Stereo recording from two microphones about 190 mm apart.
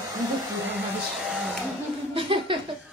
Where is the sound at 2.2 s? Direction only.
25° right (ahead or behind).